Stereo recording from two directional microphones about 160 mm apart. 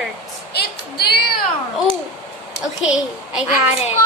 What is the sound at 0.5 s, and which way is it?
Speech, 85° left.